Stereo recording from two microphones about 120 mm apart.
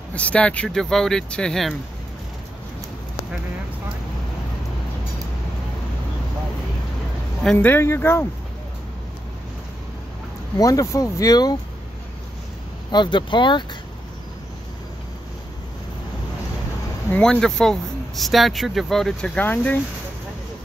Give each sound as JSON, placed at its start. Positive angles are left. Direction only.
{"t": 0.1, "sound": "speech", "side_deg": 10}
{"t": 7.5, "sound": "speech", "side_deg": 15}
{"t": 10.6, "sound": "speech", "side_deg": 30}
{"t": 12.9, "sound": "speech", "side_deg": 40}
{"t": 17.1, "sound": "speech", "side_deg": 5}